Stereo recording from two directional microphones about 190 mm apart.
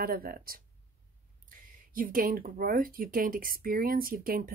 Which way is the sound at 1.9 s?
45° right (ahead or behind).